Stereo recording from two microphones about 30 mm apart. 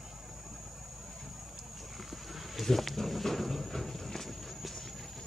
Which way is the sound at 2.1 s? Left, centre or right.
Centre.